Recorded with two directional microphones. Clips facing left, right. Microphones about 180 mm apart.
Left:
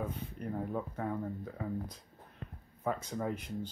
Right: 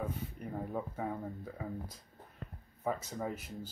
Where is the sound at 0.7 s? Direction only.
5° right (ahead or behind).